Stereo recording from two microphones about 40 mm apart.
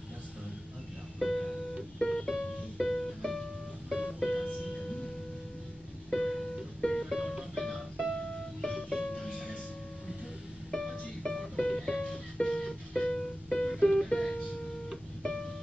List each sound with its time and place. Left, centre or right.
1.2 s music: centre
6.0 s music: centre
7.1 s music: centre
10.7 s music: centre
12.0 s music: left